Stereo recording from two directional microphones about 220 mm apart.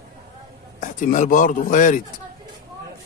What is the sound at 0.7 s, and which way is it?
Speech, 35° left (ahead or behind).